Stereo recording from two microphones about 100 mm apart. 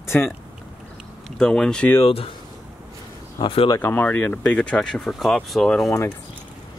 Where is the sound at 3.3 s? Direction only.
60° left (ahead or behind).